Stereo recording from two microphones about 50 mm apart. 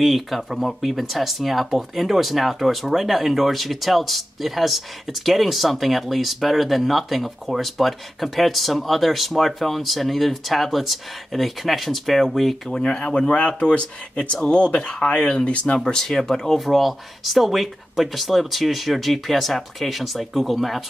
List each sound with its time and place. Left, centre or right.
0.0 s speech: centre
12.7 s speech: centre